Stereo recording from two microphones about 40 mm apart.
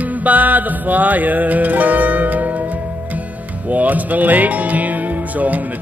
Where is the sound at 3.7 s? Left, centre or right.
Right.